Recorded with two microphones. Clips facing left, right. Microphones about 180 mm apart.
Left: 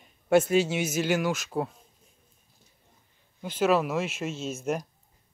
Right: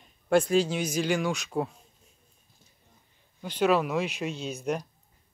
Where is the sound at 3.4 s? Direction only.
Centre (ahead or behind).